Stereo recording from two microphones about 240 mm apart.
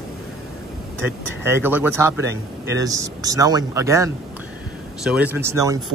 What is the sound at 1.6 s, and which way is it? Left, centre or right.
Speech, centre.